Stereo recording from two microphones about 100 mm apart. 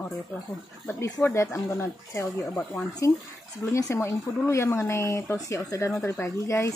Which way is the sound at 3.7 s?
30° left (ahead or behind).